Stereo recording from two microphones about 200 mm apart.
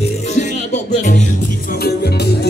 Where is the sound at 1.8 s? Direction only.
50° left (ahead or behind).